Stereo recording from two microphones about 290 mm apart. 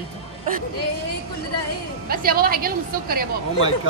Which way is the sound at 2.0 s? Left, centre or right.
Right.